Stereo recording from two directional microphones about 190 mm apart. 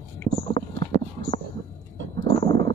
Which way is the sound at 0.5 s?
30° left (ahead or behind).